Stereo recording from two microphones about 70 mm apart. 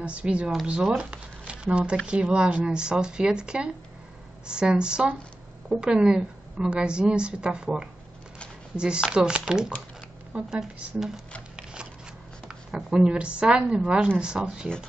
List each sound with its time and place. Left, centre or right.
0.0 s a woman's voice: centre
1.5 s zipper: centre
2.0 s a woman's voice: centre
11.5 s shuffling cards: centre
12.4 s a woman's voice: centre